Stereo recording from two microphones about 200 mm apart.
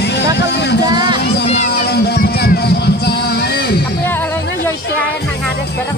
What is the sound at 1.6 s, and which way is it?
Music, 55° left (ahead or behind).